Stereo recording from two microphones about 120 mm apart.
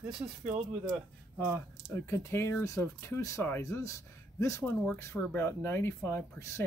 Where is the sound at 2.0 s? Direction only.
25° left (ahead or behind).